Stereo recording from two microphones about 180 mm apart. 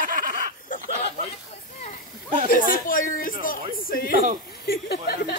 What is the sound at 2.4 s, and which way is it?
A woman's voice, 50° left (ahead or behind).